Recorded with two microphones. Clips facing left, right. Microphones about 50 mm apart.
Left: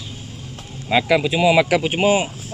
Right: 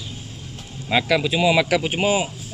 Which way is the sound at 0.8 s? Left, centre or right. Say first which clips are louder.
Left 3 dB; centre.